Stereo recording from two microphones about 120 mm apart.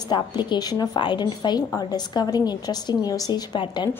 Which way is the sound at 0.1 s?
40° left (ahead or behind).